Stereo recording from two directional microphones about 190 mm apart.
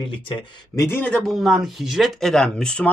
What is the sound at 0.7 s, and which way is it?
Speech, 10° left (ahead or behind).